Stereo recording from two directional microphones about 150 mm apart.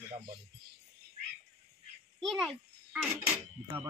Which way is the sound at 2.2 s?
Centre (ahead or behind).